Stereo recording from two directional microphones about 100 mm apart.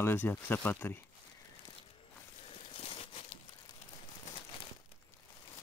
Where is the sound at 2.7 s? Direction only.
70° left (ahead or behind).